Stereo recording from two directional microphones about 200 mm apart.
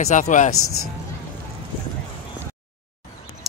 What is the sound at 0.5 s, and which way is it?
Speech, 90° left.